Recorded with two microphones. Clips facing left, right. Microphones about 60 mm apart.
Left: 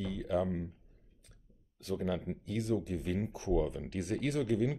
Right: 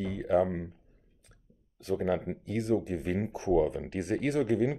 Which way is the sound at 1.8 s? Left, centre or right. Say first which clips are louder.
Right 6 dB; right.